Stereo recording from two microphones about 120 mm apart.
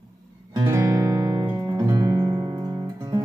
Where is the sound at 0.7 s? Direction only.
25° right (ahead or behind).